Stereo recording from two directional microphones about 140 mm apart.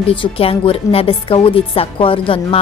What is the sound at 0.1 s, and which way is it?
A woman's voice, 40° left (ahead or behind).